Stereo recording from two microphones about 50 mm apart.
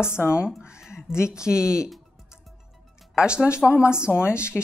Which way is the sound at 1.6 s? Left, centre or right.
Centre.